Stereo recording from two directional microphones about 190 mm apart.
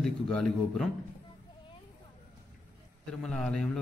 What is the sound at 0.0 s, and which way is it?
Speech, 5° left (ahead or behind).